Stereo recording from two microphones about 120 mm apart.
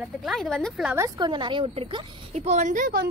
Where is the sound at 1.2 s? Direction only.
40° right (ahead or behind); by 2.8 s 90° right.